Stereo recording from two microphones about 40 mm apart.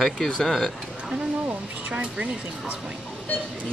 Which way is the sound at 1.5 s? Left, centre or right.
Right.